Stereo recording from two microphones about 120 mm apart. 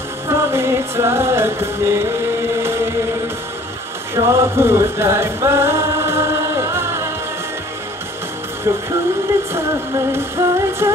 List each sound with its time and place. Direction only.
0.3 s music: 20° right (ahead or behind)
4.1 s music: 20° right (ahead or behind)
8.7 s music: 25° right (ahead or behind)
10.1 s music: 20° right (ahead or behind)